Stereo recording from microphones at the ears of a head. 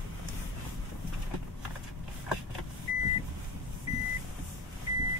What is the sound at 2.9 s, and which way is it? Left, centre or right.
Vehicle, left.